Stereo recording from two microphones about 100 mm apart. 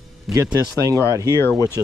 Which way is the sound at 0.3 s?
5° right (ahead or behind).